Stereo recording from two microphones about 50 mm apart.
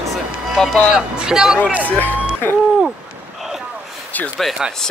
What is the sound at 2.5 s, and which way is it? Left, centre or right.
Owl, left.